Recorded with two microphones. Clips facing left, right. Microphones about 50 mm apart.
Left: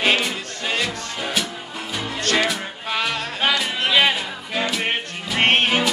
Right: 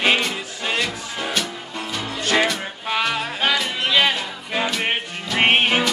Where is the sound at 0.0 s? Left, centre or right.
Centre.